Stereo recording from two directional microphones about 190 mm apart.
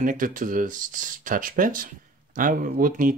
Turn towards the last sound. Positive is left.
turn(degrees=-45)  # may be behind; listen again after turning